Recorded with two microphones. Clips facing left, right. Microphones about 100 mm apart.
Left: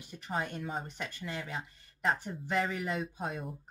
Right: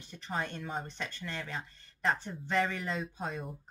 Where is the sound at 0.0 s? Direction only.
10° left (ahead or behind).